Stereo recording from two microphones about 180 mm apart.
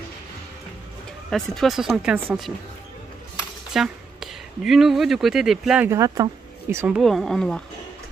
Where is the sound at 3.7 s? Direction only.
Centre (ahead or behind).